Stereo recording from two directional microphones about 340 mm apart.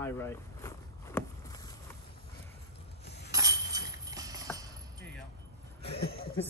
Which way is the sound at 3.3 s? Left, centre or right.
Centre.